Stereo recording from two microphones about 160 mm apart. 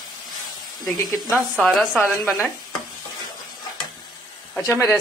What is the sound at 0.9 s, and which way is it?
Speech, 25° left (ahead or behind).